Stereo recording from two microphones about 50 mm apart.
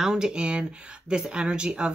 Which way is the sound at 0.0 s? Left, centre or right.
Centre.